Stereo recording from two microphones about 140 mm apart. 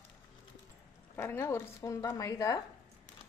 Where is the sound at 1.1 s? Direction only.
15° left (ahead or behind).